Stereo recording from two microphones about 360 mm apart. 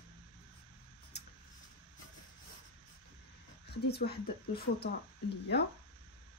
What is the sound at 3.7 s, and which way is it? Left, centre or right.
Speech, left.